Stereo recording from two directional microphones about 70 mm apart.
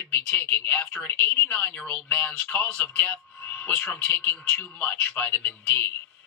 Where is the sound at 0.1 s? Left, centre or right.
Left.